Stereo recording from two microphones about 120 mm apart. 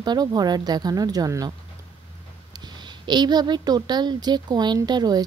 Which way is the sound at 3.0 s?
35° right (ahead or behind).